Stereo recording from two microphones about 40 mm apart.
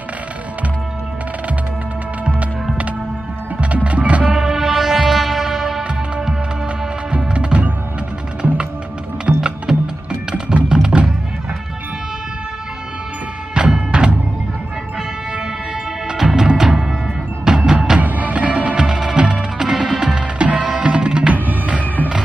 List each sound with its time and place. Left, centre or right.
3.6 s music: right
4.3 s music: centre
7.1 s music: right
9.3 s music: right
13.6 s music: right
16.2 s music: centre
18.0 s music: right
18.8 s music: centre
21.3 s music: right